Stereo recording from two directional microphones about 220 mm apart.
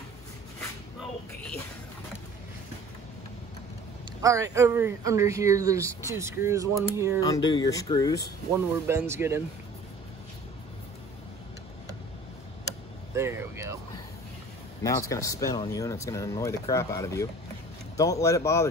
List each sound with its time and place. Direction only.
4.2 s speech: 15° right (ahead or behind)
7.2 s speech: 20° left (ahead or behind)
8.8 s speech: 10° right (ahead or behind)
13.1 s speech: 10° right (ahead or behind)
14.8 s speech: 15° left (ahead or behind)